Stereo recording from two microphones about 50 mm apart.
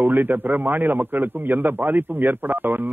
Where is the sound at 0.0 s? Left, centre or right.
Right.